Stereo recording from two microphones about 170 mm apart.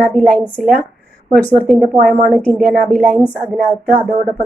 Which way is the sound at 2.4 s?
5° left (ahead or behind).